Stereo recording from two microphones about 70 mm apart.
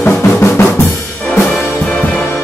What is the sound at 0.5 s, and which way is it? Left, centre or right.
Drum kit, left.